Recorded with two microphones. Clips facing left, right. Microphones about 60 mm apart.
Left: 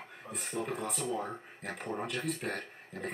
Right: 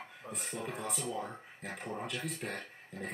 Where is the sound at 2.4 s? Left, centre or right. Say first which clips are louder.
Left 3 dB; left.